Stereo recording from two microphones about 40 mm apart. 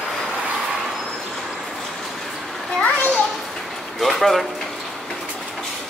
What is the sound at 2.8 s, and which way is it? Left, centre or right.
Children playing, left.